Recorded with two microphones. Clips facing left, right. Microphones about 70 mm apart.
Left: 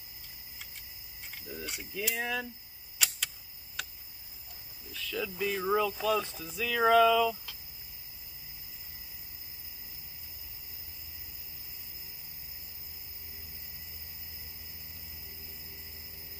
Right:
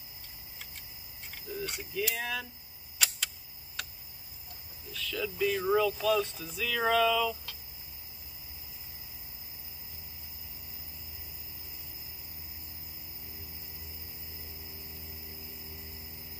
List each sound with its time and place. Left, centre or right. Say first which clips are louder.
1.3 s mechanisms: right 4 dB; centre
2.1 s speech: left 2 dB; centre
4.9 s speech: right 1 dB; centre